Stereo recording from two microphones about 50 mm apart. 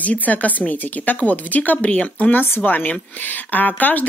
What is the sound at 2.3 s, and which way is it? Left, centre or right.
Speech, left.